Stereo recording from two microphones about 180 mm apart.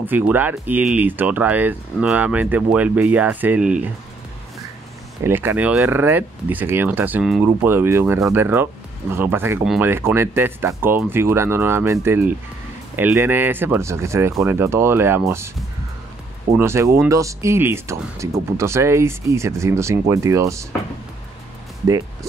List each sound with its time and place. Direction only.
0.0 s speech: 10° right (ahead or behind)
5.2 s speech: 10° right (ahead or behind)
16.5 s speech: 15° right (ahead or behind)